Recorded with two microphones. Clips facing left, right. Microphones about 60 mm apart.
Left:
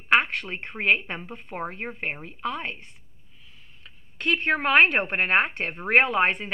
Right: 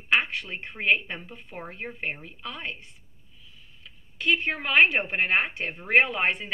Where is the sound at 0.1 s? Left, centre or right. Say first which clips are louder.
Left 3 dB; left.